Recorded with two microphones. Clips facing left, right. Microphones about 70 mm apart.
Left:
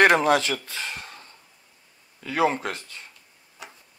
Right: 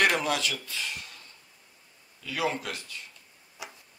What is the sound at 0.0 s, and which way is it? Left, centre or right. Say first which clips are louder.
Speech: left 8 dB; left.